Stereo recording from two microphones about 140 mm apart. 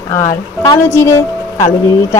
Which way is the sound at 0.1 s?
25° left (ahead or behind).